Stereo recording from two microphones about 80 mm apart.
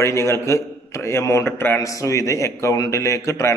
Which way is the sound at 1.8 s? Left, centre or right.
Left.